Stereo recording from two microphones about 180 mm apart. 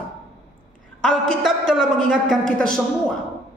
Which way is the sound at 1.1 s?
5° left (ahead or behind).